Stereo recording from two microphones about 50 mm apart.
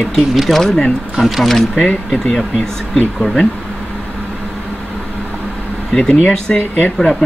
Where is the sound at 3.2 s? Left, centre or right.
Centre.